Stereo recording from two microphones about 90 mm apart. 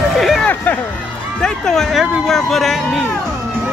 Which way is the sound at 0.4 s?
20° left (ahead or behind).